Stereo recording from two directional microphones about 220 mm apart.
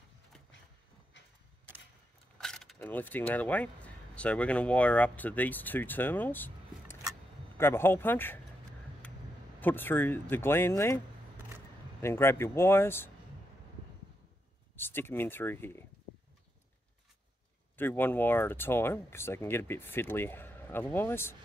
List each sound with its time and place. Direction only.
1.1 s vehicle: 55° left (ahead or behind)
2.3 s speech: 5° left (ahead or behind)
9.6 s speech: 10° left (ahead or behind)
12.0 s speech: 10° left (ahead or behind)
14.8 s speech: 10° left (ahead or behind)
17.7 s speech: 10° left (ahead or behind)